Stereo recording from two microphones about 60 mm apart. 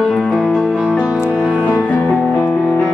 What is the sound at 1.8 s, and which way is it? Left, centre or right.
Music, left.